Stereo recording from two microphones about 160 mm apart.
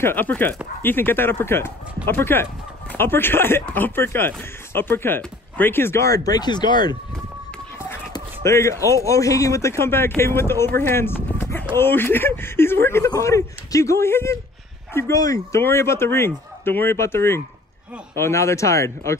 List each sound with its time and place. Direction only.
0.0 s speech: 10° left (ahead or behind); by 7.0 s 25° left (ahead or behind)
8.5 s speech: 20° left (ahead or behind)